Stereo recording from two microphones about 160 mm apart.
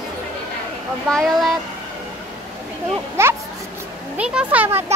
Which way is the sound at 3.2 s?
15° right (ahead or behind).